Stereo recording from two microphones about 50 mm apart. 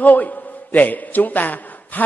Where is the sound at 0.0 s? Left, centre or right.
Left.